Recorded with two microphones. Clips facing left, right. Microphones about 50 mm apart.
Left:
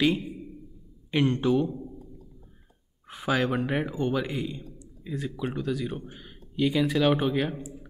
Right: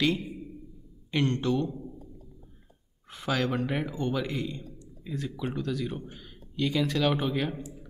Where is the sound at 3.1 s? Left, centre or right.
Centre.